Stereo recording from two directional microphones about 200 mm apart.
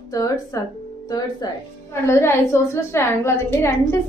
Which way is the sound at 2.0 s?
15° left (ahead or behind).